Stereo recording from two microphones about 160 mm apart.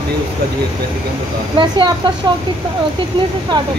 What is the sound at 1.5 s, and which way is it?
Speech, 30° right (ahead or behind).